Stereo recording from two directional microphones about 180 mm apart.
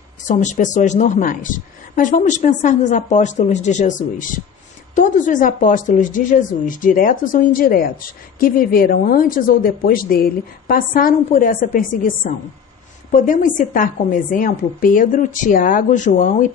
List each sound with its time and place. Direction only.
0.3 s a woman's voice: 45° left (ahead or behind)